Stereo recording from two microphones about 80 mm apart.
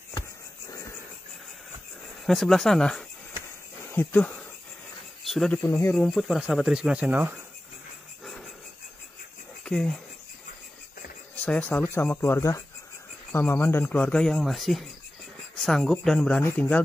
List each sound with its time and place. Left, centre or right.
2.2 s speech: centre
3.8 s speech: left
5.2 s a sound: centre
5.6 s speech: left
5.9 s speech: centre
8.2 s a sound: centre
9.7 s speech: centre
11.4 s speech: centre
11.8 s a man's voice: left
12.4 s speech: left
13.3 s a man's voice: left; by 14.4 s centre
14.4 s speech: centre
16.5 s a man's voice: centre